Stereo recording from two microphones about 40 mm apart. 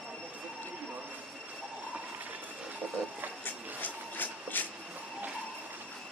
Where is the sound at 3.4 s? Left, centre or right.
Left.